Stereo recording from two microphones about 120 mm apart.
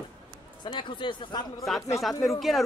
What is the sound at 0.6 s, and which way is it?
Speech, 40° left (ahead or behind).